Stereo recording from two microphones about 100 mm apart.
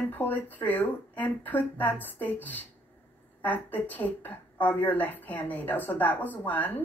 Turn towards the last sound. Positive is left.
turn(degrees=20)  # may be behind; listen again after turning